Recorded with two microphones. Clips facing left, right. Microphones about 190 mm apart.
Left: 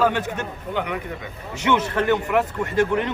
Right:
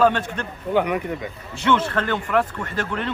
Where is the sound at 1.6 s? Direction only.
15° left (ahead or behind).